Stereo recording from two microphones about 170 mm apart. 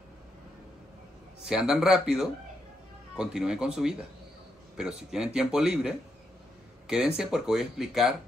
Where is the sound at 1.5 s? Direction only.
Centre (ahead or behind).